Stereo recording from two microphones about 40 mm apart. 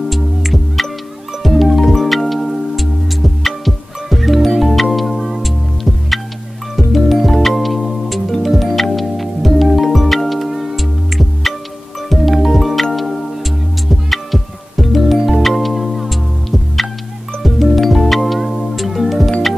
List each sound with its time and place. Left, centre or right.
0.1 s music: centre
6.9 s music: centre